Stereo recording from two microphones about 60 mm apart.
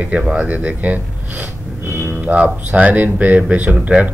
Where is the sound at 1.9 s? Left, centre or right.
Right.